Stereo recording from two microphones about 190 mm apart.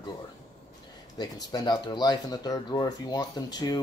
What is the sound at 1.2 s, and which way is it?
Speech, 20° left (ahead or behind).